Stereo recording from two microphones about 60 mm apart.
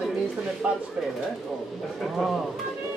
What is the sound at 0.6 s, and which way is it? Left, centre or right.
Speech, centre.